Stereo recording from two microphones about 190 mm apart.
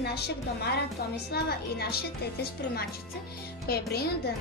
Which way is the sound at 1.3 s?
55° left (ahead or behind).